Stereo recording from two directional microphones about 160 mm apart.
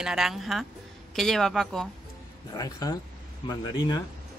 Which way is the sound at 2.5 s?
25° left (ahead or behind).